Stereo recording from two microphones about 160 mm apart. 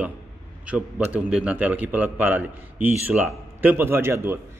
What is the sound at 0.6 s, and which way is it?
A man's voice, 10° right (ahead or behind).